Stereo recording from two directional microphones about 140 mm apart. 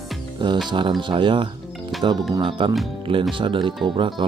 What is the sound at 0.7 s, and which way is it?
Speech, 35° right (ahead or behind).